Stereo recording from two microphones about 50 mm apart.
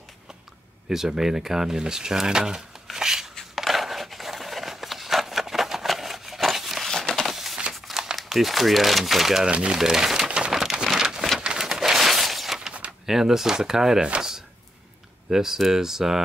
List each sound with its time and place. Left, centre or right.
0.8 s speech: centre
3.3 s a sound: centre
6.9 s a sound: centre
7.8 s crumpling: centre
8.2 s speech: centre
9.5 s speech: right
9.8 s crumpling: centre
11.5 s a sound: centre
13.0 s speech: centre